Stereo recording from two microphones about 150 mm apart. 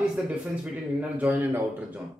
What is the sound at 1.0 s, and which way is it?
Speech, 10° right (ahead or behind).